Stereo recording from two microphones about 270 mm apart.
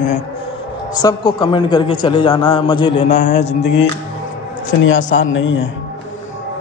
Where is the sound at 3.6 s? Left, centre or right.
Left.